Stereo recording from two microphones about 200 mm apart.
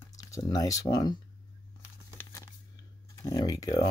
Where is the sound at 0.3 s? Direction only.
20° left (ahead or behind).